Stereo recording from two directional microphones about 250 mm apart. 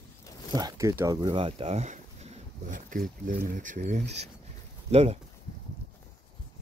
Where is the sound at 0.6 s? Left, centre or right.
Centre.